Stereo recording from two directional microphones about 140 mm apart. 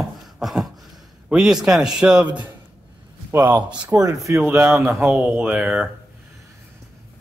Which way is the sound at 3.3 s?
15° right (ahead or behind).